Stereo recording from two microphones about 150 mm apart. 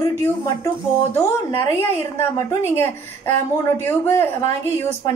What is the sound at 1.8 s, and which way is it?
Speech, 15° left (ahead or behind).